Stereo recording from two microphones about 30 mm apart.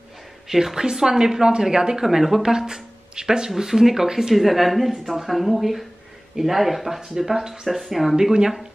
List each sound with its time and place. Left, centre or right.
0.5 s speech: centre
2.0 s speech: centre
2.4 s speech: right
4.4 s speech: centre
7.2 s speech: centre
8.2 s speech: right